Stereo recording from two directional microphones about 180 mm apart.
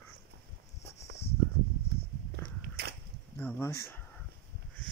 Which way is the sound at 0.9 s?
35° left (ahead or behind).